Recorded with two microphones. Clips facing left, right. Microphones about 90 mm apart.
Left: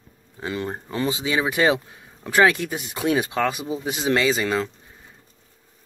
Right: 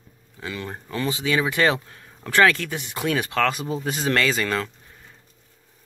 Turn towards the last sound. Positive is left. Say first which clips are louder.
# left 2 dB
turn(degrees=15)  # may be behind; listen again after turning